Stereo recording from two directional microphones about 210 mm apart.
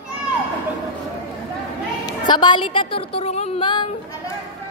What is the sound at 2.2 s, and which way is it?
A woman's voice, 20° left (ahead or behind).